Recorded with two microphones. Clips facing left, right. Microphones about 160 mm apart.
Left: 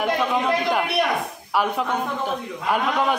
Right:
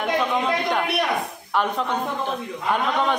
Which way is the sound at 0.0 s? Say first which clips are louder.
Left 1 dB; 5° left (ahead or behind).